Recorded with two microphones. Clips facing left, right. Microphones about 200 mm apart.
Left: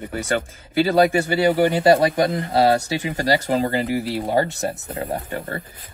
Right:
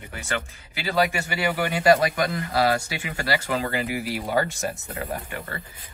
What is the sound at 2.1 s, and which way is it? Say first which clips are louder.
Speech: left 6 dB; 25° left (ahead or behind).